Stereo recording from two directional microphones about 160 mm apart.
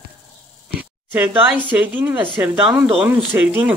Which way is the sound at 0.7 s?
10° right (ahead or behind).